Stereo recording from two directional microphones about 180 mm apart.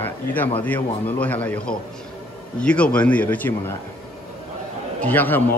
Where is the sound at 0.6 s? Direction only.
10° left (ahead or behind).